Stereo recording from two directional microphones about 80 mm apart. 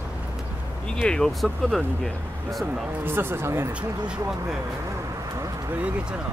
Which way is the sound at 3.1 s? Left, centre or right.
Right.